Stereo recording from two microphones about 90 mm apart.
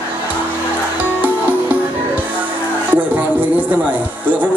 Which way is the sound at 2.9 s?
15° right (ahead or behind).